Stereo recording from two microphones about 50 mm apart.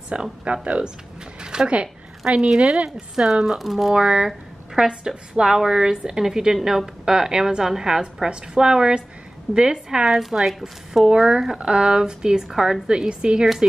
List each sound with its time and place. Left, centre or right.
0.1 s a woman's voice: right; by 3.9 s centre
3.9 s a woman's voice: centre